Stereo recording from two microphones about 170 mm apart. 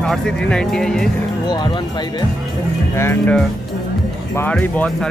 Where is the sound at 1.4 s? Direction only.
25° left (ahead or behind).